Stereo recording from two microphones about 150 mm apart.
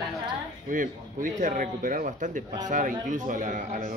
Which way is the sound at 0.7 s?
60° right (ahead or behind).